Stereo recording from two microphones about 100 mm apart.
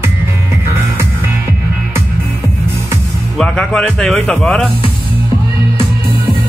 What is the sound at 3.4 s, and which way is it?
Speech, 5° left (ahead or behind).